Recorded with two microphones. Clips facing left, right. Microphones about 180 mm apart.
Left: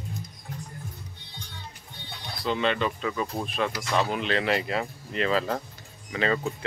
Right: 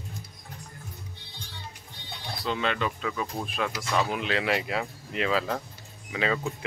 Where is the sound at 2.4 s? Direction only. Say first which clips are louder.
Left 3 dB; centre (ahead or behind).